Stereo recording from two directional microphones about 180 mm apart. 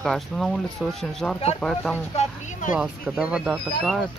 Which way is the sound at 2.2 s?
45° left (ahead or behind).